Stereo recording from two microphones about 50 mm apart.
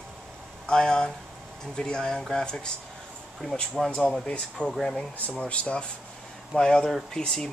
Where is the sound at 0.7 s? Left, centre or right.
Centre.